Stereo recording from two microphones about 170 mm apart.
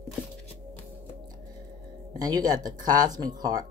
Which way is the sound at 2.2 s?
25° right (ahead or behind).